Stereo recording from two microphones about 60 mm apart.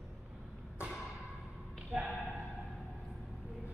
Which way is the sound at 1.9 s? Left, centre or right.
Centre.